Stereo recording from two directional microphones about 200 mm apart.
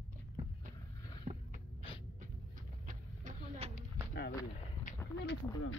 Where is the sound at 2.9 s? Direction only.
35° right (ahead or behind).